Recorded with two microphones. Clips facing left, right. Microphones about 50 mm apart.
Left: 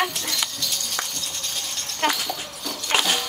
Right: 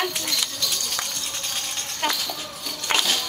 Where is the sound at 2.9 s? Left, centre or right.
Centre.